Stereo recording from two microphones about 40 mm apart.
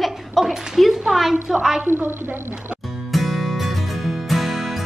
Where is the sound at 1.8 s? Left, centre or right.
Right.